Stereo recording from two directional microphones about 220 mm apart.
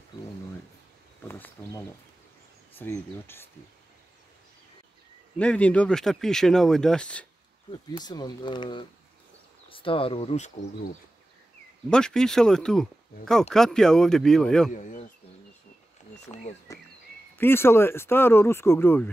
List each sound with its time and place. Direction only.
1.2 s speech: 10° left (ahead or behind)
2.8 s speech: 10° left (ahead or behind)
5.4 s speech: 5° left (ahead or behind)
7.9 s speech: 20° left (ahead or behind)
11.9 s speech: 5° left (ahead or behind)
14.7 s speech: 35° left (ahead or behind)
16.3 s speech: 30° left (ahead or behind)
16.7 s speech: 15° left (ahead or behind)